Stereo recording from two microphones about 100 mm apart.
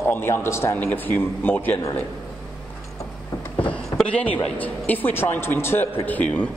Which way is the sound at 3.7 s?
10° left (ahead or behind).